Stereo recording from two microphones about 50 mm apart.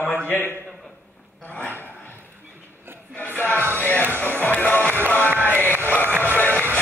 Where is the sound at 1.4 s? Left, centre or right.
Left.